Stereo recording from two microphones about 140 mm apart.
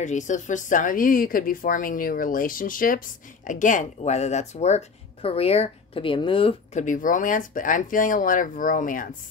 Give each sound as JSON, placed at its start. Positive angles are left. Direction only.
{"t": 0.0, "sound": "speech", "side_deg": 60}
{"t": 3.4, "sound": "speech", "side_deg": 65}
{"t": 6.7, "sound": "speech", "side_deg": 65}